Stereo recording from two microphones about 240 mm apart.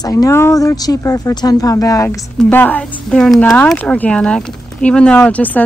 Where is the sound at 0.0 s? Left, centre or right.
Centre.